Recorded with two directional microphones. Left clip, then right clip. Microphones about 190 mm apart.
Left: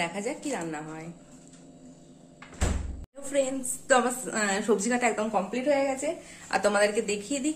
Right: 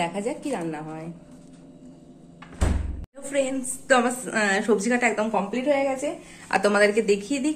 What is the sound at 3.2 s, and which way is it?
A woman's voice, 5° left (ahead or behind).